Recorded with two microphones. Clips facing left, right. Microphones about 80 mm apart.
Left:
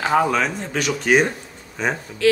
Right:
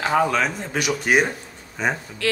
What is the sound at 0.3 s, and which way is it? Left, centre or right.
Speech, centre.